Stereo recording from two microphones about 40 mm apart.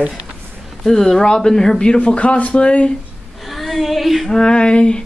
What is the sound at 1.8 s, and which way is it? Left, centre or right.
Speech, left.